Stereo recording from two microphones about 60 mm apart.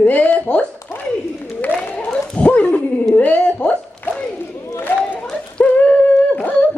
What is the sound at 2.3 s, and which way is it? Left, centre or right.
Dog, left.